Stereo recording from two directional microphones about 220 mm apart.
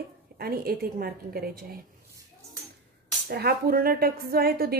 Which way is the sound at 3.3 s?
45° right (ahead or behind).